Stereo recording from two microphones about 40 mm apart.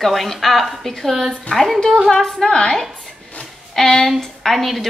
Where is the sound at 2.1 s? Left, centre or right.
Centre.